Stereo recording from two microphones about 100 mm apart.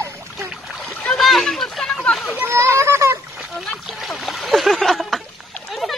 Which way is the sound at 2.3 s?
25° right (ahead or behind).